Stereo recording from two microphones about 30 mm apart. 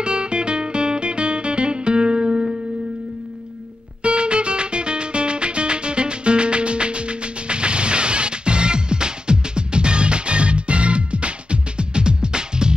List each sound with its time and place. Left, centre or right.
0.0 s music: right
4.0 s music: right